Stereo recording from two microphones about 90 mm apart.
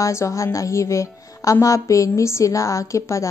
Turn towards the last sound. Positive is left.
turn(degrees=35)  # may be behind; listen again after turning